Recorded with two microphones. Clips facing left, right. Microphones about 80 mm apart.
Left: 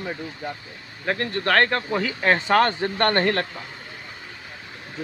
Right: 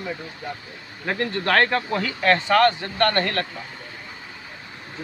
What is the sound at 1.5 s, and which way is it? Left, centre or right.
Speech, centre.